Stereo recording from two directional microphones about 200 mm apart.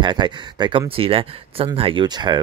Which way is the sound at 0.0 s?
20° right (ahead or behind).